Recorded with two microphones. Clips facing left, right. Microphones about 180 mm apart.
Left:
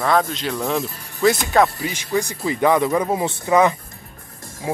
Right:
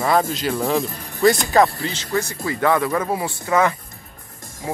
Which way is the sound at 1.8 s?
15° left (ahead or behind).